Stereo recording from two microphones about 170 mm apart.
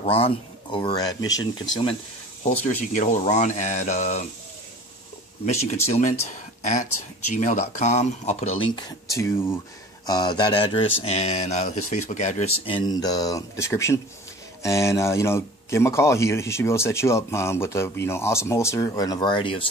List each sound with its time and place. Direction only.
0.1 s speech: 30° left (ahead or behind)
2.6 s speech: 45° left (ahead or behind)
5.4 s speech: 40° left (ahead or behind)
9.1 s speech: 15° left (ahead or behind)
11.1 s speech: 40° left (ahead or behind)